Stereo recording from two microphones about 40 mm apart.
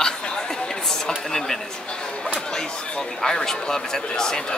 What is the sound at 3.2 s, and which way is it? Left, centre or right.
Speech, centre.